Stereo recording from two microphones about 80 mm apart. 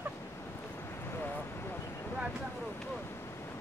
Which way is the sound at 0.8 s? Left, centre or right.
Left.